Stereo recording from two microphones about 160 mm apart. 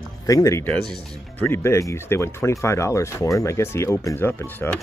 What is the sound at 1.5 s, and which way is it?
Speech, 15° left (ahead or behind).